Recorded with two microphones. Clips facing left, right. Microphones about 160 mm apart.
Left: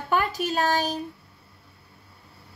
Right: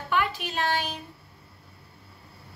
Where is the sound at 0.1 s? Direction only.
40° left (ahead or behind).